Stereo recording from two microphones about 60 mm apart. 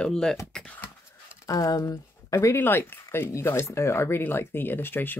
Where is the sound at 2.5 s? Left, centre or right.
Left.